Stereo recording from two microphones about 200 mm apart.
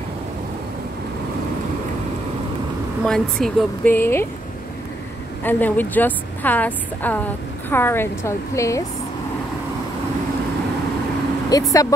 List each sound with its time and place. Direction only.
3.0 s speech: centre (ahead or behind)
5.4 s speech: 10° left (ahead or behind)
11.5 s speech: 20° left (ahead or behind)